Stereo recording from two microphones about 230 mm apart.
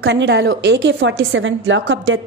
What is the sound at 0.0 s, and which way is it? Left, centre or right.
A woman's voice, right.